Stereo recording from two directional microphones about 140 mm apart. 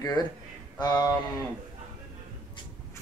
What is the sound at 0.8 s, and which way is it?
Speech, 30° left (ahead or behind).